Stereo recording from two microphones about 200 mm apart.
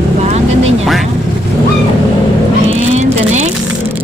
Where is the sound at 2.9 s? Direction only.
35° right (ahead or behind).